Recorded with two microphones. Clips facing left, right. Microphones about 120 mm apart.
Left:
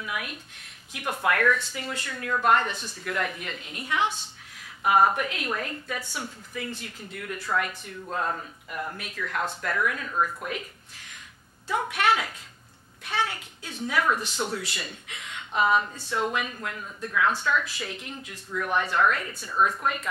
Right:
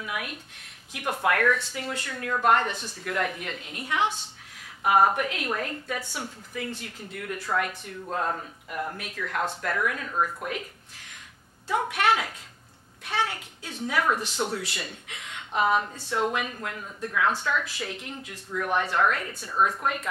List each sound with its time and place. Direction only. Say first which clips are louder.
0.0 s a woman's voice: even; 50° right (ahead or behind)
6.7 s a woman's voice: right 1 dB; 50° right (ahead or behind)
14.2 s speech: right 1 dB; 65° right (ahead or behind)
14.6 s a woman's voice: right 1 dB; 50° right (ahead or behind); by 17.6 s 35° right (ahead or behind)
17.6 s a woman's voice: right 1 dB; 50° right (ahead or behind)
18.5 s speech: even; 35° right (ahead or behind)